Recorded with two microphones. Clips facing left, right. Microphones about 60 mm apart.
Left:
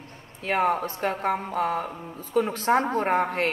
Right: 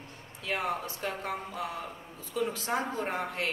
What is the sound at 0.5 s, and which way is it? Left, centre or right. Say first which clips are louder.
A woman's voice: left 9 dB; left.